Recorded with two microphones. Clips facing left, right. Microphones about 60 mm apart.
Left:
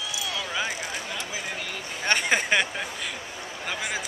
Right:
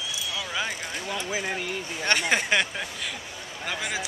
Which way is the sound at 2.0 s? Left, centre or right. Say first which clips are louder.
Left 1 dB; centre.